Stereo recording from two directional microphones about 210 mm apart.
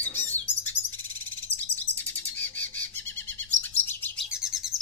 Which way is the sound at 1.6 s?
10° left (ahead or behind).